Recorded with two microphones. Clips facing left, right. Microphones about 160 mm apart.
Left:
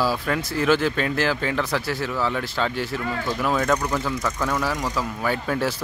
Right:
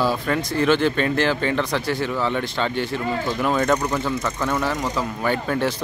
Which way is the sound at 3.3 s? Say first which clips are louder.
Right 1 dB; centre (ahead or behind).